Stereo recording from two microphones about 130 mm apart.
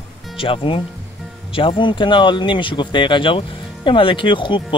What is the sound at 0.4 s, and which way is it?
Speech, 45° left (ahead or behind).